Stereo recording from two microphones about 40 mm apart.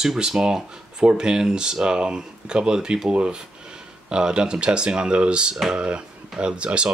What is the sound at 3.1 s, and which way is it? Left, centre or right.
Speech, right.